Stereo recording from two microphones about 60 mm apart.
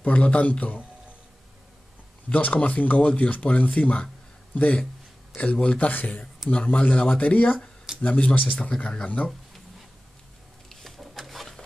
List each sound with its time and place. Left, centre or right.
0.0 s speech: left
2.2 s speech: left
5.4 s speech: left
5.9 s speech: left
10.7 s a sound: centre